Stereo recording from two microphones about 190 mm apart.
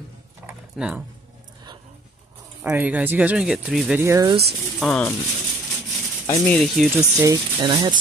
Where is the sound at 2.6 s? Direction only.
10° right (ahead or behind).